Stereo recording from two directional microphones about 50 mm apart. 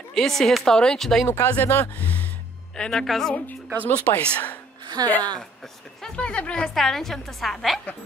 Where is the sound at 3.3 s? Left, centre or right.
Left.